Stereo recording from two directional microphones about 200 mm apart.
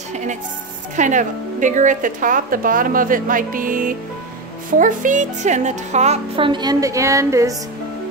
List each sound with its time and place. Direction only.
0.1 s a woman's voice: 35° right (ahead or behind); by 7.5 s 15° right (ahead or behind)